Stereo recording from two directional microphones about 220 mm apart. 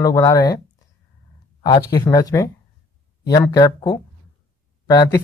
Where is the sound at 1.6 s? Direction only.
15° left (ahead or behind).